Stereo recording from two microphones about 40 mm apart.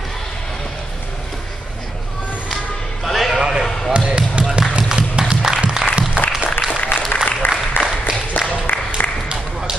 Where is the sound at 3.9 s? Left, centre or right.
Right.